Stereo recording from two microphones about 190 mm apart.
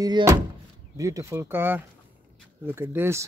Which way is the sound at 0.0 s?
20° right (ahead or behind).